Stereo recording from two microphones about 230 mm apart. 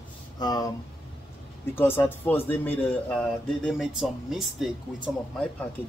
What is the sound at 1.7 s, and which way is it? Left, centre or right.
Speech, centre.